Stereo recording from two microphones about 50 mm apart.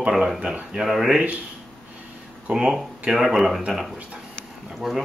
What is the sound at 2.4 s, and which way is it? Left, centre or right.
Speech, centre.